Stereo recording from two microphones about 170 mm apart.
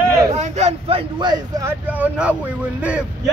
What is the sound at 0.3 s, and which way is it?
Speech, 40° right (ahead or behind).